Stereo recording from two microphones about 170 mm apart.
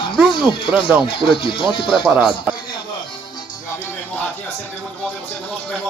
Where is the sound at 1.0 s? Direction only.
30° left (ahead or behind).